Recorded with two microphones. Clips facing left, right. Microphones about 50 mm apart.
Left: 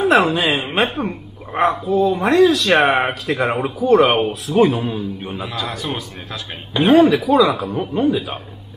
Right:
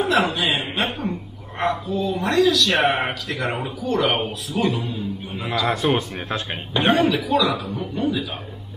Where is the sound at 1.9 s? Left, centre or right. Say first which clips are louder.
Left 7 dB; left.